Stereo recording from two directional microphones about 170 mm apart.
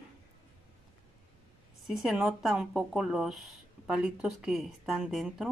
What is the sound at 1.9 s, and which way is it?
Speech, centre (ahead or behind).